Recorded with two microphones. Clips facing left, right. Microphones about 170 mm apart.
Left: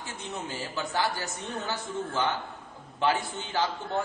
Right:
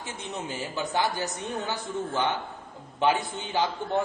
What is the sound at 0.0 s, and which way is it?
A man's voice, 15° right (ahead or behind).